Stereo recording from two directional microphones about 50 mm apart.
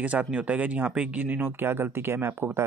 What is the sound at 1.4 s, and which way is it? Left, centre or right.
Speech, right.